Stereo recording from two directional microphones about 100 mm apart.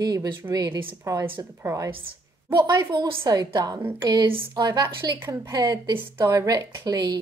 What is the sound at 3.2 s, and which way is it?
A woman's voice, 35° right (ahead or behind).